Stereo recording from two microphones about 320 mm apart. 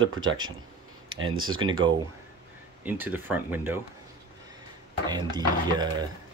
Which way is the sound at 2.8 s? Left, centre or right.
Centre.